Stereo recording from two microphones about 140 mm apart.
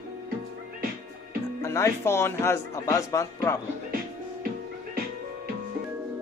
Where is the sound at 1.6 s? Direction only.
20° left (ahead or behind).